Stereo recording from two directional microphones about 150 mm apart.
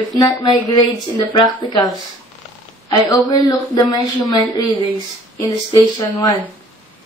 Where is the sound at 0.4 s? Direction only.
30° left (ahead or behind).